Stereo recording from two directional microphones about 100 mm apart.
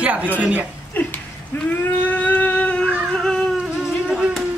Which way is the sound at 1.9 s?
15° left (ahead or behind).